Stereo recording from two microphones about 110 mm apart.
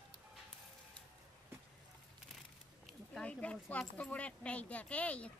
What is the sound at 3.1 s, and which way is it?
Speech, 10° left (ahead or behind).